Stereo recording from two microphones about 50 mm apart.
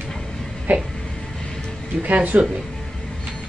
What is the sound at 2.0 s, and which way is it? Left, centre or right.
Speech, right.